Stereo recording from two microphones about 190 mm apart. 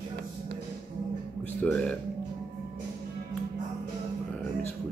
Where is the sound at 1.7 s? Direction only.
5° left (ahead or behind).